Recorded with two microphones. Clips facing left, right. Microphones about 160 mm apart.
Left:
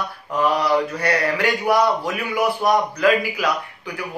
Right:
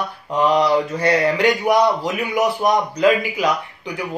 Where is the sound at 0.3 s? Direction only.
20° right (ahead or behind).